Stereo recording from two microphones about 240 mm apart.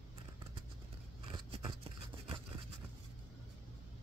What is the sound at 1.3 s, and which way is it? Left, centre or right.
Scissors, centre.